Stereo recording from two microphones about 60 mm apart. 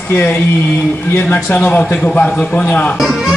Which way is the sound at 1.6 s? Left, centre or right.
Left.